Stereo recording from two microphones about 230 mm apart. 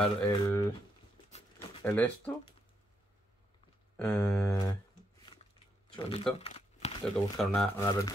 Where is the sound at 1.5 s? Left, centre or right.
Centre.